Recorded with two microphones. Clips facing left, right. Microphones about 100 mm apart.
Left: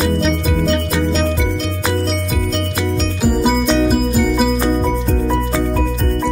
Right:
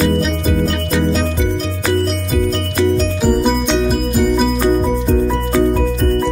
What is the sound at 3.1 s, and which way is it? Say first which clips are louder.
Music: right 1 dB; 5° left (ahead or behind).